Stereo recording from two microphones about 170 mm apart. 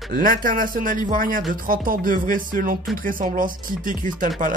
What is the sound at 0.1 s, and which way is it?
Speech, 55° right (ahead or behind).